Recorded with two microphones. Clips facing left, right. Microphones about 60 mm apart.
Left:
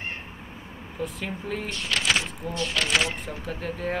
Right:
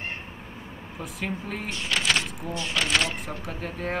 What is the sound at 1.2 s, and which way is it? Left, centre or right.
Speech, centre.